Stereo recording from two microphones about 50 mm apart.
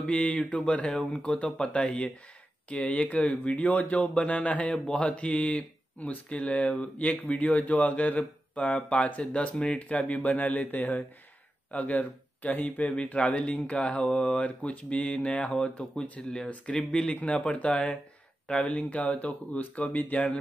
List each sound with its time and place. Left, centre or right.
0.0 s speech: left
15.6 s speech: centre; by 20.3 s left